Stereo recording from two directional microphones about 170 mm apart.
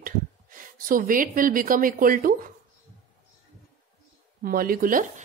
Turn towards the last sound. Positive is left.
turn(degrees=-50)  # may be behind; listen again after turning